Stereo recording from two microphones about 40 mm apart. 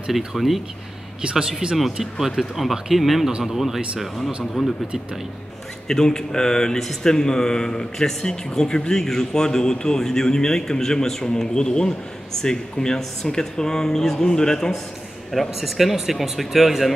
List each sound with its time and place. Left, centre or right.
0.1 s speech: centre
1.6 s speech: right
2.1 s speech: centre
5.9 s a man's voice: centre
15.3 s speech: centre